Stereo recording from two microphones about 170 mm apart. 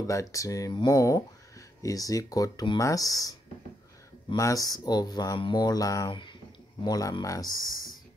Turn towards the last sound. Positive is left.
turn(degrees=20)  # may be behind; listen again after turning